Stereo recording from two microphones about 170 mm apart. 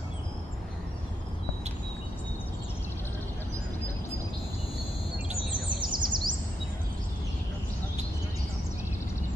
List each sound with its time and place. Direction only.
5.8 s bird vocalization: 25° right (ahead or behind)